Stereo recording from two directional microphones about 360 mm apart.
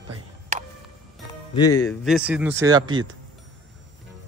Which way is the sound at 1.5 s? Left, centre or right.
Centre.